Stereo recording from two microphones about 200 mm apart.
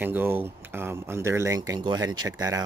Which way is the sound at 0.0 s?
10° right (ahead or behind).